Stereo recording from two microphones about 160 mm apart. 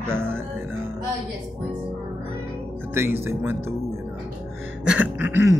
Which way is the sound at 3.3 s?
15° right (ahead or behind).